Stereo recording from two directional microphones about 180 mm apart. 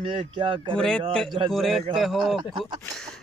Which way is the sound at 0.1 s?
30° right (ahead or behind).